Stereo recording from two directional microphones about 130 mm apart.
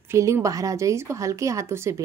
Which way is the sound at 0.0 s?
20° right (ahead or behind).